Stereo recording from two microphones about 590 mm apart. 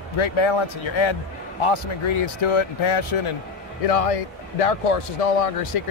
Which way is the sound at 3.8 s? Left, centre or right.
Left.